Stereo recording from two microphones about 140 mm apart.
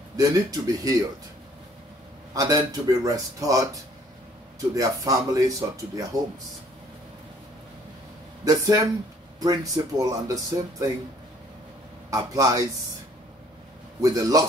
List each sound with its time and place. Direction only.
0.2 s speech: 25° right (ahead or behind)
2.3 s speech: 25° right (ahead or behind)
8.5 s speech: 25° right (ahead or behind)
12.1 s speech: 25° right (ahead or behind)
14.0 s speech: 25° right (ahead or behind)